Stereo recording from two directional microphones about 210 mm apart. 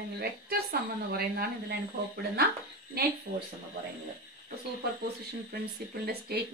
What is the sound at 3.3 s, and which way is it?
Speech, 45° right (ahead or behind).